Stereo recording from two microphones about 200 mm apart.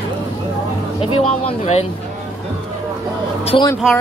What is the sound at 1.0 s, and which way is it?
Speech, 25° left (ahead or behind).